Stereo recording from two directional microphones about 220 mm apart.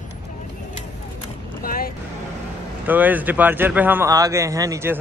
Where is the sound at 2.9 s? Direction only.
5° right (ahead or behind).